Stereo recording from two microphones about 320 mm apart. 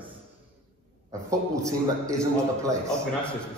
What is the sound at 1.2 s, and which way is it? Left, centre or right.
A man's voice, centre.